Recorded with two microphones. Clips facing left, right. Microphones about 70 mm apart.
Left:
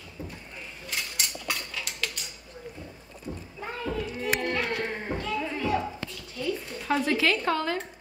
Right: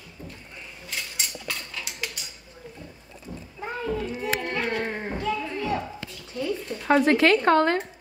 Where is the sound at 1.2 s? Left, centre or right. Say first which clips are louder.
Left 1 dB; centre.